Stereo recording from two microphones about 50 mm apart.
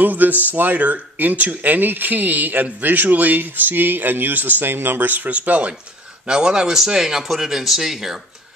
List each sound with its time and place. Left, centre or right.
0.0 s speech: right
6.2 s speech: centre